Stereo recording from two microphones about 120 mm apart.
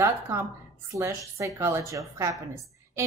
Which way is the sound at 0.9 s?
25° right (ahead or behind).